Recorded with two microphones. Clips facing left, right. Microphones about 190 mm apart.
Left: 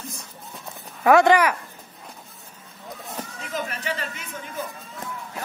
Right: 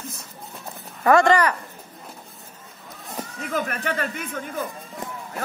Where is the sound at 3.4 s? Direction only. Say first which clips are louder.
Right 6 dB; 55° right (ahead or behind).